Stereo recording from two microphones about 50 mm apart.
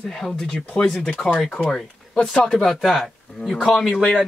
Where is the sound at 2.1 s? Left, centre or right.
Centre.